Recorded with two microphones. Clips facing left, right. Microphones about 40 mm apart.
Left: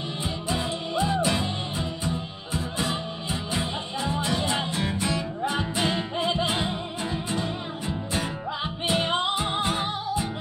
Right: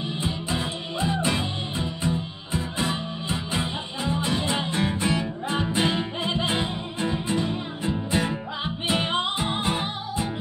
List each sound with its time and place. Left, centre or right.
0.2 s music: centre